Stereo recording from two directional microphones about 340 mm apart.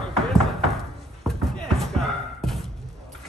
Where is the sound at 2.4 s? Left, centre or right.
Centre.